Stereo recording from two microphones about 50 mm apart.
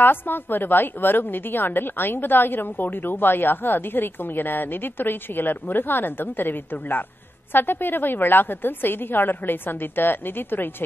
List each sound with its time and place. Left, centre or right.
0.0 s a woman's voice: left